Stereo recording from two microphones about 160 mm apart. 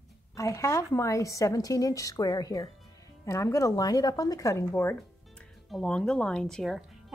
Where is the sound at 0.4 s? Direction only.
20° left (ahead or behind).